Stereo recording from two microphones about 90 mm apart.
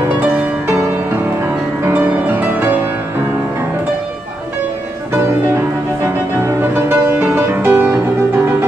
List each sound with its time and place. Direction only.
2.0 s music: 20° right (ahead or behind)
6.4 s music: 30° right (ahead or behind)